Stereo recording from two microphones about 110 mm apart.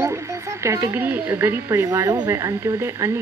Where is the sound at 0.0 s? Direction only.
25° right (ahead or behind).